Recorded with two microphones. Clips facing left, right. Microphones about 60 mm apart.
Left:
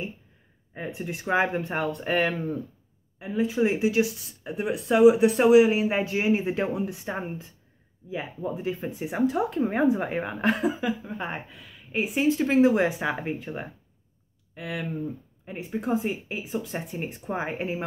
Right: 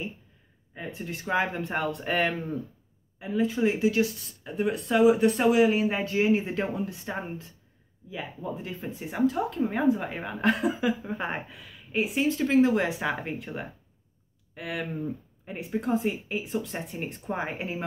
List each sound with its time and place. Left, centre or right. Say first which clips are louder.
0.7 s speech: left 3 dB; centre
1.7 s speech: left 2 dB; centre
9.2 s speech: left 1 dB; left
10.4 s speech: right 1 dB; centre
10.9 s speech: right 1 dB; centre
11.9 s speech: even; centre
12.2 s speech: left 2 dB; centre
15.4 s speech: even; centre